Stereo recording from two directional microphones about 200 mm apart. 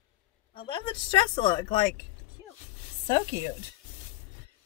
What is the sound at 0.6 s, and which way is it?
Speech, 25° left (ahead or behind).